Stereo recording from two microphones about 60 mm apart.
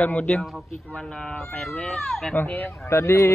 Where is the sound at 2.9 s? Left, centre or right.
Left.